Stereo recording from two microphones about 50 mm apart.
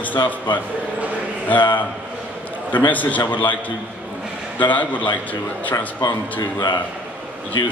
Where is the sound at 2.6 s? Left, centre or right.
Left.